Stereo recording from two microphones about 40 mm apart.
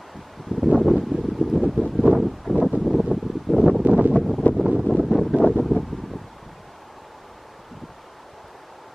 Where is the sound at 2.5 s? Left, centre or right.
Centre.